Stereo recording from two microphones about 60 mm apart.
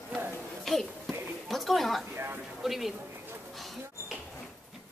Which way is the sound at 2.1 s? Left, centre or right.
Right.